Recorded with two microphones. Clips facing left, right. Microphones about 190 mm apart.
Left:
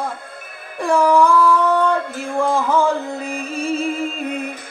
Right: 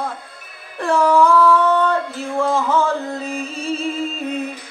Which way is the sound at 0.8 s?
15° left (ahead or behind).